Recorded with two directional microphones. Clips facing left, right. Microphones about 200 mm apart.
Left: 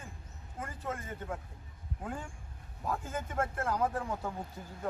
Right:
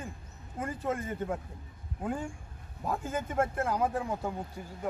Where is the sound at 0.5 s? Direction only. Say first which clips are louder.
Right 7 dB; 15° right (ahead or behind).